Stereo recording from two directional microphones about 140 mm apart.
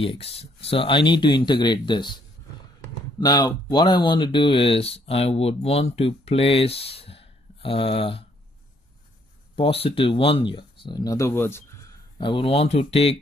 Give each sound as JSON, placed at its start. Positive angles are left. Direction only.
{"t": 0.0, "sound": "speech", "side_deg": 40}
{"t": 3.2, "sound": "speech", "side_deg": 25}
{"t": 9.6, "sound": "speech", "side_deg": 40}
{"t": 12.2, "sound": "speech", "side_deg": 35}